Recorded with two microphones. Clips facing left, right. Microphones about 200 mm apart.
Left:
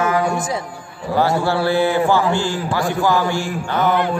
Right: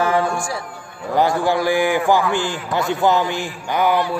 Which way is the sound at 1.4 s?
15° right (ahead or behind).